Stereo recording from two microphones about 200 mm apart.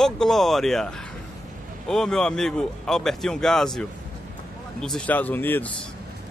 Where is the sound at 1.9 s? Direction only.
5° left (ahead or behind).